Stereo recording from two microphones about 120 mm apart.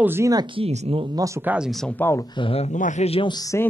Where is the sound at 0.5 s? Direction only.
60° right (ahead or behind).